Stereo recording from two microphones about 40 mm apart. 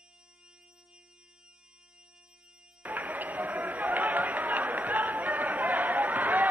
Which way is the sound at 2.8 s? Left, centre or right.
Right.